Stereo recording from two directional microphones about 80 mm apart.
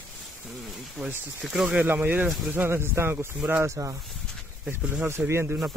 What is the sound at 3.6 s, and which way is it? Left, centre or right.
Speech, right.